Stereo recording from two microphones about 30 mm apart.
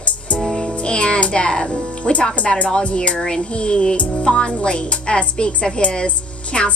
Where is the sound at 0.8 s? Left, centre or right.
Left.